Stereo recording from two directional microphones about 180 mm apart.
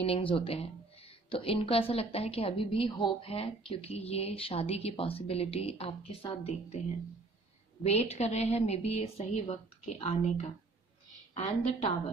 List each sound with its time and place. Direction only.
0.0 s speech: 30° left (ahead or behind)
7.8 s speech: 35° left (ahead or behind)